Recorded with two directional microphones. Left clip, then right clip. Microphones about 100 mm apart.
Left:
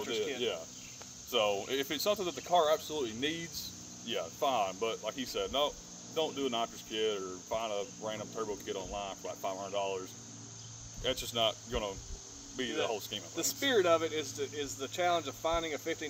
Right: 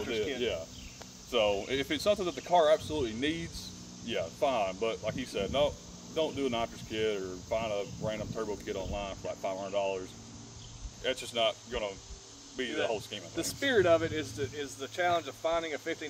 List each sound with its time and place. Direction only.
0.0 s cricket: 10° right (ahead or behind)
1.3 s speech: 10° right (ahead or behind)